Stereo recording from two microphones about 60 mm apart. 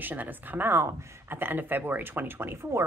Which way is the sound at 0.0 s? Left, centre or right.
Right.